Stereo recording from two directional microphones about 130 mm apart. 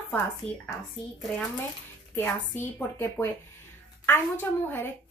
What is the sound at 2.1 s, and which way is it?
Speech, 15° left (ahead or behind).